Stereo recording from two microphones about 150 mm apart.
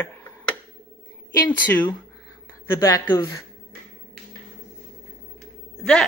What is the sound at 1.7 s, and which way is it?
Speech, 10° left (ahead or behind).